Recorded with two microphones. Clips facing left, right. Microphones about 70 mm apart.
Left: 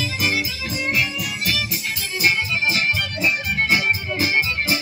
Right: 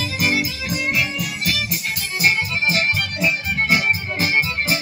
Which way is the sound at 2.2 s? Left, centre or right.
Right.